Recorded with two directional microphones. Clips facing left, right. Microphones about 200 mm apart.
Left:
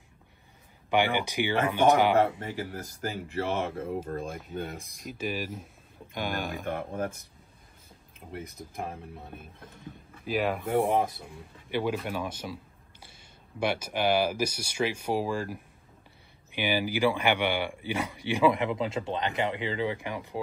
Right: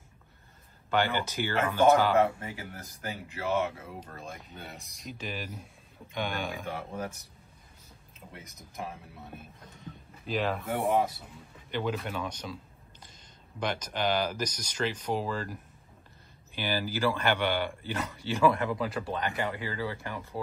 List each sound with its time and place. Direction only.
0.8 s a man's voice: 15° left (ahead or behind)
3.5 s speech: 50° left (ahead or behind)
4.3 s speech: centre (ahead or behind)
4.6 s speech: 50° left (ahead or behind)
5.0 s speech: 5° left (ahead or behind)
6.6 s speech: 55° left (ahead or behind)
8.3 s speech: 55° left (ahead or behind)
10.2 s a man's voice: 5° left (ahead or behind)